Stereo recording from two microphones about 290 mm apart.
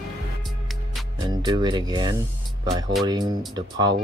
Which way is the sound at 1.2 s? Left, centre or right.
Centre.